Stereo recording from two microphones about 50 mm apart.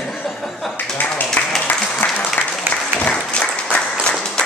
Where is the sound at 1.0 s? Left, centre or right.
Left.